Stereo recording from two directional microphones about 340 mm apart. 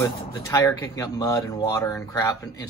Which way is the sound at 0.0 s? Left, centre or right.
Centre.